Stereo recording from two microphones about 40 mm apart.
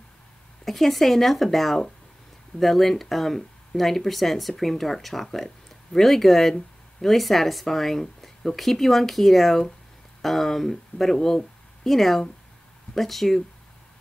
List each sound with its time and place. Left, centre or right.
0.7 s speech: centre